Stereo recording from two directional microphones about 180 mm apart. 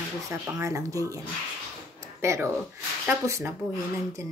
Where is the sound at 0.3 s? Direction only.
15° right (ahead or behind).